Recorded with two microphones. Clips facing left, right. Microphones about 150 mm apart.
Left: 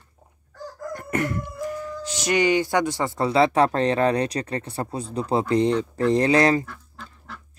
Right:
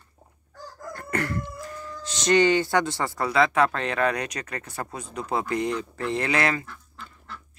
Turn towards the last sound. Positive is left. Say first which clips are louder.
# left 7 dB
turn(degrees=35)  # may be behind; listen again after turning